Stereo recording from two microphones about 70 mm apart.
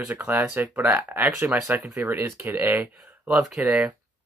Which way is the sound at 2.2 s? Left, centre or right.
Right.